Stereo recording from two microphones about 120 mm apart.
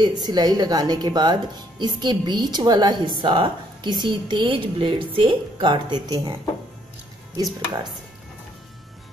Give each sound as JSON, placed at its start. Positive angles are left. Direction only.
{"t": 0.0, "sound": "a woman's voice", "side_deg": -35}